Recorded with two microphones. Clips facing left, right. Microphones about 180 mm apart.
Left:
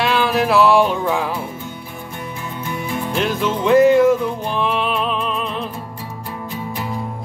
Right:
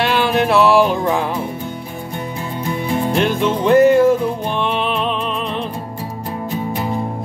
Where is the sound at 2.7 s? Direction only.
35° right (ahead or behind).